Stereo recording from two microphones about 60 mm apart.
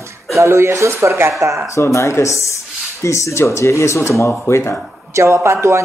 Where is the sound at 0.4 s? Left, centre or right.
Right.